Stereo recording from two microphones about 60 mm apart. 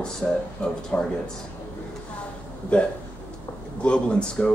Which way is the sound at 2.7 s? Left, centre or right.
Centre.